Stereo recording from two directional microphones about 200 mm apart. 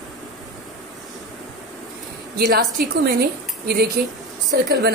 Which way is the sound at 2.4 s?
50° right (ahead or behind).